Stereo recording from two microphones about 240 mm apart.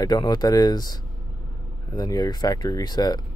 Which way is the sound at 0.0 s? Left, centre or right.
Centre.